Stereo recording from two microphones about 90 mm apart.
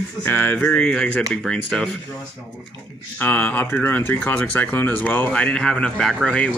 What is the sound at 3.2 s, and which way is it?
Speech, 15° left (ahead or behind).